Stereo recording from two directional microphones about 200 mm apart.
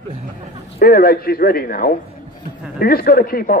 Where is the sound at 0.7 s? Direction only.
50° left (ahead or behind).